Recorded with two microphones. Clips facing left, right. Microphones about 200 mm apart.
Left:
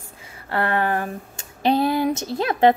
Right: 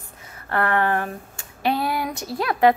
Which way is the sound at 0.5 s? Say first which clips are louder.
Even; 25° left (ahead or behind).